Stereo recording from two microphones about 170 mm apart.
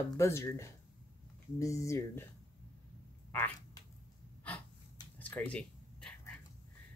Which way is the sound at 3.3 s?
15° left (ahead or behind).